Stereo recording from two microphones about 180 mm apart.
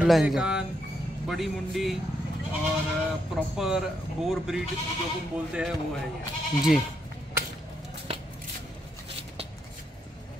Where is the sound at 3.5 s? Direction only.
5° right (ahead or behind).